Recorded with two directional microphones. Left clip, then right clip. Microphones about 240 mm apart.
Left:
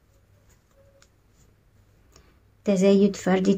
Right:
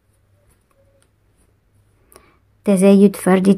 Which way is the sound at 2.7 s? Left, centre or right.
Right.